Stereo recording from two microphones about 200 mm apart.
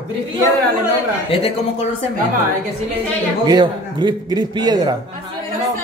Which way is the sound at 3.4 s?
20° right (ahead or behind).